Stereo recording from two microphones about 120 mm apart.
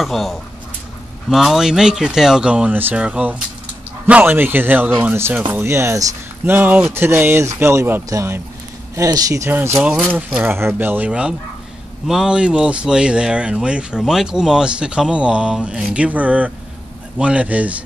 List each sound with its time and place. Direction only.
0.0 s speech: centre (ahead or behind)